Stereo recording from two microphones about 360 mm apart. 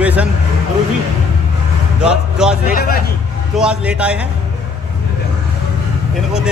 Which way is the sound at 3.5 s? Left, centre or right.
Centre.